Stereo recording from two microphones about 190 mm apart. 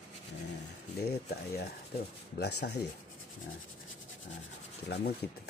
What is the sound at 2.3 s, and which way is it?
Speech, 60° left (ahead or behind).